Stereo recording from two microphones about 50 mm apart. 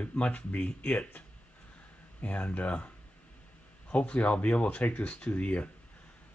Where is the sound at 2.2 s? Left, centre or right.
Left.